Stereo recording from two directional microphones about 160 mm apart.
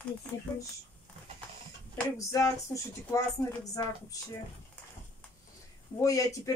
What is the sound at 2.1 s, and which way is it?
Speech, 20° left (ahead or behind).